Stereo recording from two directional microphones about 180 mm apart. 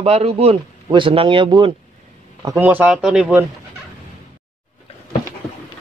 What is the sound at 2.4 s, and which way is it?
Speech, 15° right (ahead or behind).